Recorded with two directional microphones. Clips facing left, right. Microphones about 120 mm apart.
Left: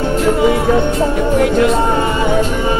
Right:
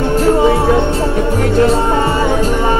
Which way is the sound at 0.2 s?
30° right (ahead or behind).